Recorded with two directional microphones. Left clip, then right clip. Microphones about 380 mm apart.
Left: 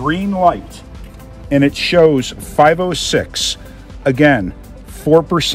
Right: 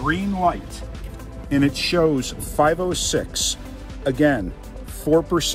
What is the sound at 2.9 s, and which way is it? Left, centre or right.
Speech, centre.